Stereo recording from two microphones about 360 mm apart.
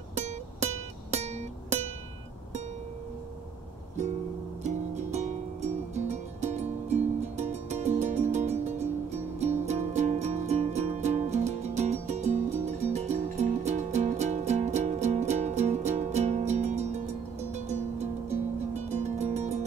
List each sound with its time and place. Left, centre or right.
0.1 s music: centre
4.6 s music: centre